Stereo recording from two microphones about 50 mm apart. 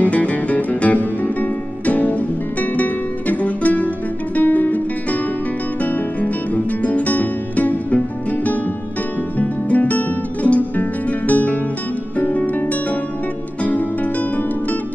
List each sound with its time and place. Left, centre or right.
0.0 s music: left